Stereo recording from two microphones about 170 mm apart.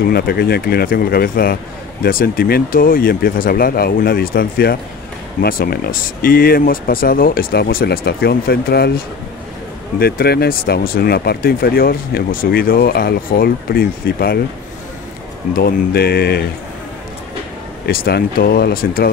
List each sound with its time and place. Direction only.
0.0 s speech: 65° left (ahead or behind)
15.5 s speech: 65° left (ahead or behind)
17.8 s speech: 70° left (ahead or behind)